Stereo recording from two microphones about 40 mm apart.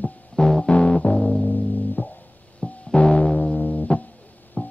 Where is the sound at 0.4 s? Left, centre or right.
Centre.